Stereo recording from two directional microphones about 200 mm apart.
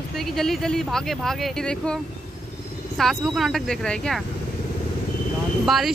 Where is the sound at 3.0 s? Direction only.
Centre (ahead or behind).